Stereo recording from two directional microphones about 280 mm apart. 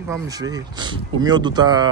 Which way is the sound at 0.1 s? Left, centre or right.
Centre.